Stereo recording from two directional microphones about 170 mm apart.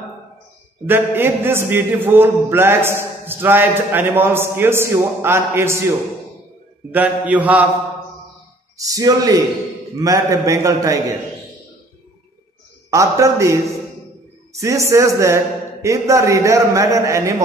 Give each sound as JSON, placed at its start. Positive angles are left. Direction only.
{"t": 0.8, "sound": "a man's voice", "side_deg": -10}
{"t": 6.9, "sound": "a man's voice", "side_deg": -10}
{"t": 8.7, "sound": "a man's voice", "side_deg": -20}
{"t": 12.9, "sound": "a man's voice", "side_deg": -20}